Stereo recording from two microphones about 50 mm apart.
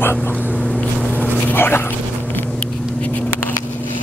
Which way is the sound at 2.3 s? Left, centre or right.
Left.